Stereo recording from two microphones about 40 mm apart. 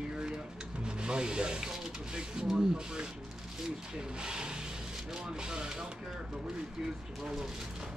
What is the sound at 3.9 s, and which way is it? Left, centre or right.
Speech, centre.